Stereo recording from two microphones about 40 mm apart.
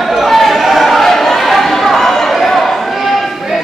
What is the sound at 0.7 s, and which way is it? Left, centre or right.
Chatter, centre.